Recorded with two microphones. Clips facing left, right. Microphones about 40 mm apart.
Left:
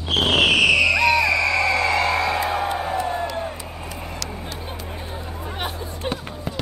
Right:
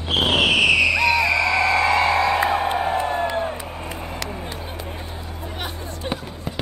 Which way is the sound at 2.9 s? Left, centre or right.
Right.